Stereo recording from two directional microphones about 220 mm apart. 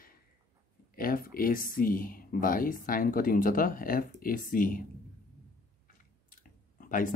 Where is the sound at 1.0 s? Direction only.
40° left (ahead or behind).